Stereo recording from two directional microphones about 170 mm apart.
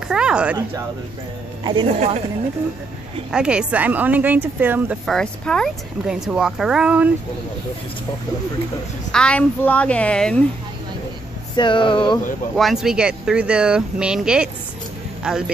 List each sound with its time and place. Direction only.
0.1 s speech: 5° right (ahead or behind)
1.6 s speech: 30° right (ahead or behind)
3.3 s speech: 5° right (ahead or behind)
5.0 s speech: 5° left (ahead or behind)
9.1 s a woman's voice: 5° left (ahead or behind)
11.5 s speech: 30° left (ahead or behind)
12.5 s speech: centre (ahead or behind)